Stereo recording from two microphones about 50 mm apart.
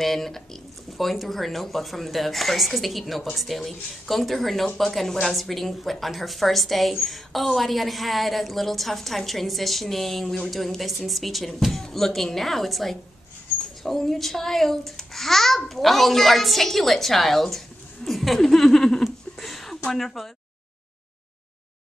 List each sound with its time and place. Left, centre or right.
0.0 s a woman's voice: centre
19.3 s a sound: centre
19.9 s a woman's voice: centre